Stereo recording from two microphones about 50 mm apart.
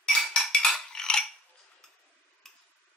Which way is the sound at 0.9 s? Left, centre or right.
Centre.